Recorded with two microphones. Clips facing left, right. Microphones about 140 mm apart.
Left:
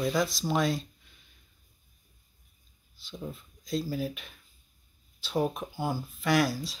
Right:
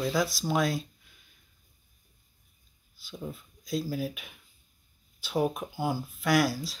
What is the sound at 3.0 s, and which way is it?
Speech, 5° right (ahead or behind).